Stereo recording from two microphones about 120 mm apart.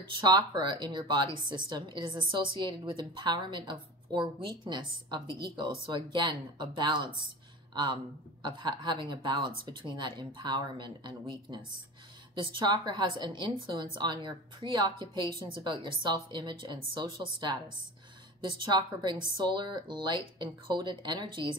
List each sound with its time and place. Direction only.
0.6 s a woman's voice: 40° right (ahead or behind)